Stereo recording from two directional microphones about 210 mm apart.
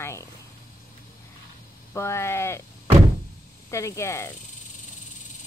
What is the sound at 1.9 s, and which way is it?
Speech, 10° left (ahead or behind).